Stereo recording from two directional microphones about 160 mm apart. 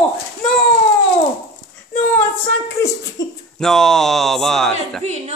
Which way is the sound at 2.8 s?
20° left (ahead or behind).